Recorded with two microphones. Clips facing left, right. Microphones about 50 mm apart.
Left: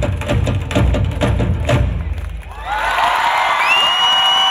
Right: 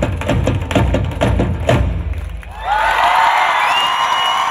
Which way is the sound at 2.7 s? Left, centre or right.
Right.